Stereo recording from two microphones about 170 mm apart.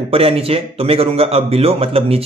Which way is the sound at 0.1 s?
35° right (ahead or behind).